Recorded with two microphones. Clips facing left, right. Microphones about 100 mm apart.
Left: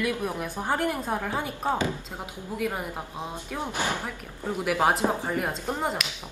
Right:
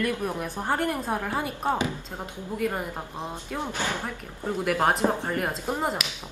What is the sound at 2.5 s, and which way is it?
Speech, 5° left (ahead or behind).